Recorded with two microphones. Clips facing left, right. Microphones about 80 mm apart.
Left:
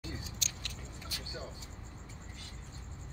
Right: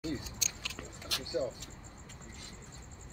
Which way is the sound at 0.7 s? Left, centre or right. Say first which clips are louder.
Right 4 dB; right.